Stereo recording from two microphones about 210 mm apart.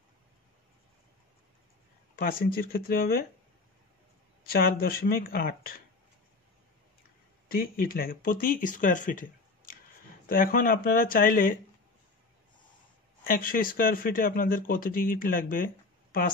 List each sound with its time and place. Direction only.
2.1 s speech: 45° left (ahead or behind)
4.5 s speech: 45° left (ahead or behind)
7.4 s speech: 45° left (ahead or behind)
13.2 s speech: 45° left (ahead or behind)